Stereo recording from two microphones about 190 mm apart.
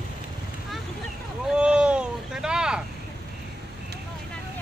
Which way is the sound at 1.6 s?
5° right (ahead or behind).